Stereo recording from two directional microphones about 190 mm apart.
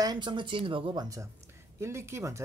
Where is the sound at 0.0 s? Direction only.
20° right (ahead or behind).